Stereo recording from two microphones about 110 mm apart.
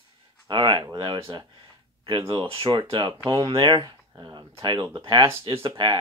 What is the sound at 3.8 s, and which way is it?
Speech, 30° right (ahead or behind).